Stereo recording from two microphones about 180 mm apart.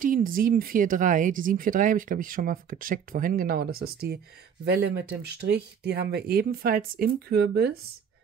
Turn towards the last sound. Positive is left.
turn(degrees=-65)  # may be behind; listen again after turning